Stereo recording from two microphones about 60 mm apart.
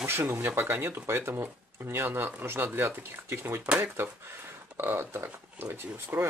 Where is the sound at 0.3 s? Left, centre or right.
Right.